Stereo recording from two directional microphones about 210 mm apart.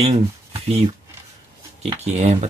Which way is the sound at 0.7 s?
30° right (ahead or behind).